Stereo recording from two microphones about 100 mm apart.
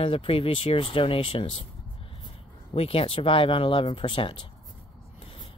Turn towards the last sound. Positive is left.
turn(degrees=60)  # may be behind; listen again after turning